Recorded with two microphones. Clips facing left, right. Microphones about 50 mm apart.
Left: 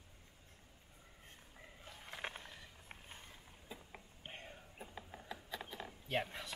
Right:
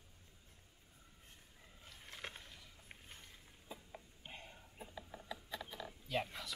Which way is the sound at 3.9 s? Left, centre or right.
Left.